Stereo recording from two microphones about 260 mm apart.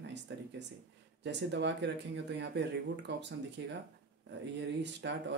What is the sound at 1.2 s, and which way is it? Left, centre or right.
Speech, right.